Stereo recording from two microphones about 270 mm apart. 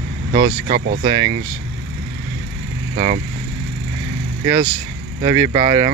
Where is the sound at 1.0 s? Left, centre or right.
Centre.